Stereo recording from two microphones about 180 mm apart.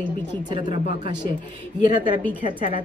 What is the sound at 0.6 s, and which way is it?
Speech, 50° left (ahead or behind).